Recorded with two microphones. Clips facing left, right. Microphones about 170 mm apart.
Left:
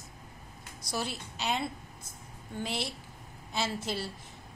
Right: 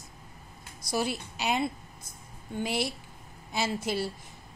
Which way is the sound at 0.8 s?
5° right (ahead or behind).